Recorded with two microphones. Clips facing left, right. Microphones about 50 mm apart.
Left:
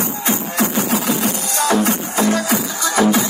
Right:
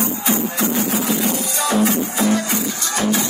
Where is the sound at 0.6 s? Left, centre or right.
Left.